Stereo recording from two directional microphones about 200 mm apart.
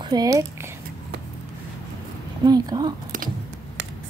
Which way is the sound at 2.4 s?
20° right (ahead or behind).